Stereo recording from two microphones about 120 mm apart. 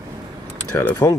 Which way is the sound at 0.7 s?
25° left (ahead or behind).